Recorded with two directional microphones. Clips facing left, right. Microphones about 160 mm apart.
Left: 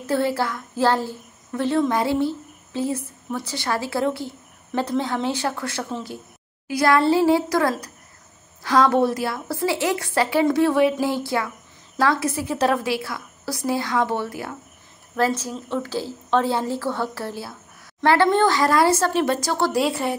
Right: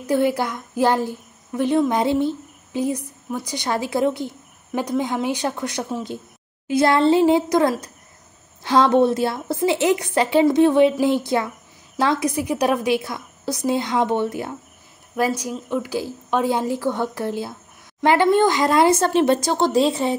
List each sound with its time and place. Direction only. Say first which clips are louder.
0.0 s a woman's voice: right 2 dB; 15° right (ahead or behind)